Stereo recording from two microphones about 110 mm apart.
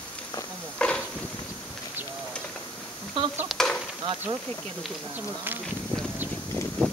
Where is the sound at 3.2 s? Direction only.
55° right (ahead or behind).